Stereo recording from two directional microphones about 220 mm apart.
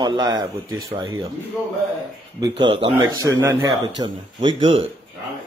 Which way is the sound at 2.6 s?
20° right (ahead or behind).